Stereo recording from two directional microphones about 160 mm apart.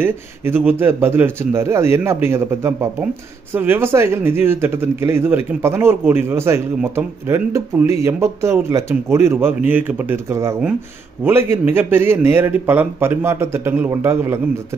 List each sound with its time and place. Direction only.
0.0 s a man's voice: 15° right (ahead or behind)